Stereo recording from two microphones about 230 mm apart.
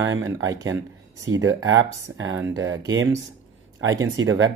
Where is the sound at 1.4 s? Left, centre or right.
Right.